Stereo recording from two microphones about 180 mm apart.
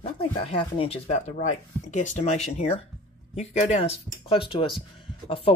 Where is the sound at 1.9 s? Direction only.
40° left (ahead or behind).